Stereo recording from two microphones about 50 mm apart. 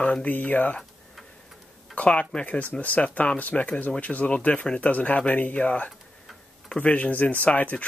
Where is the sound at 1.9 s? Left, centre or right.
Left.